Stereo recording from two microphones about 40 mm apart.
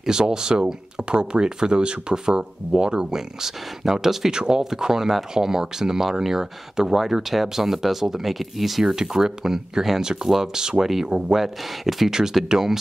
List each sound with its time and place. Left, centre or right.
0.0 s speech: centre
11.1 s speech: right
11.3 s speech: centre